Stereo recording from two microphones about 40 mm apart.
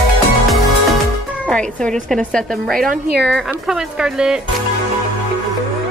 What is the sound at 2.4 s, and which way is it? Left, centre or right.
Speech, centre.